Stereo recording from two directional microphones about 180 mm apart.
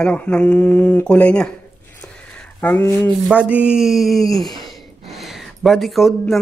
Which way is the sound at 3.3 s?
5° right (ahead or behind).